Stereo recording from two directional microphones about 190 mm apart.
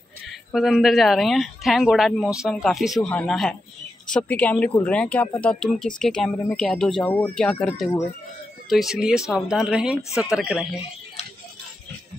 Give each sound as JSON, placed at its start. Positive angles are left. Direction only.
{"t": 0.3, "sound": "speech", "side_deg": 0}